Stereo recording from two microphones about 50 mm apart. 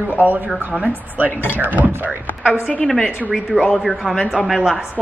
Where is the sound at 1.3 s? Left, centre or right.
Left.